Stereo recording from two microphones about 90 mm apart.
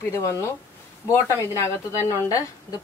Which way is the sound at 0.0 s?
30° left (ahead or behind).